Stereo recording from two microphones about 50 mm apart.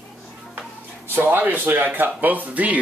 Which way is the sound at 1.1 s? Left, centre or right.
Right.